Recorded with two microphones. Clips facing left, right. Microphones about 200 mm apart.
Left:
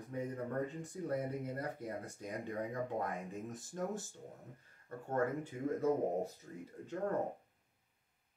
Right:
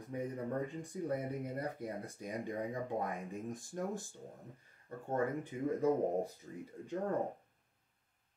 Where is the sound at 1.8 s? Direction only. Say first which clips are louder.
Right 1 dB; 15° right (ahead or behind).